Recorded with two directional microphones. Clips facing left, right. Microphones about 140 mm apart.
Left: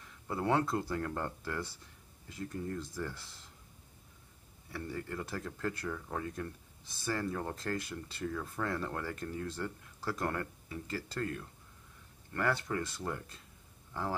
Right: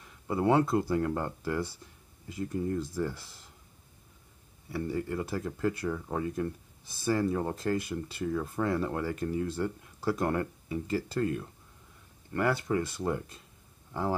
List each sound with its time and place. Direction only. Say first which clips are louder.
0.3 s speech: right 6 dB; 15° right (ahead or behind)
4.6 s speech: right 8 dB; 10° right (ahead or behind)